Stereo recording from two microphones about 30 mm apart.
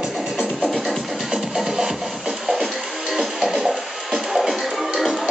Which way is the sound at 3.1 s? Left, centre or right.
Centre.